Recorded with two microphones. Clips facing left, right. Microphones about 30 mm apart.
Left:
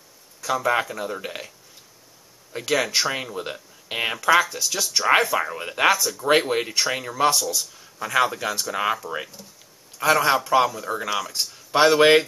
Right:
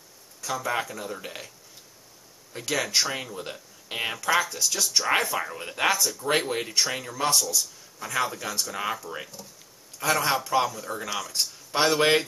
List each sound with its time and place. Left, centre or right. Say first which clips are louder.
0.4 s speech: left 6 dB; left
2.5 s speech: left 4 dB; centre